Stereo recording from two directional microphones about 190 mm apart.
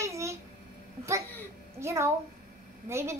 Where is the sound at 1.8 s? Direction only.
15° right (ahead or behind).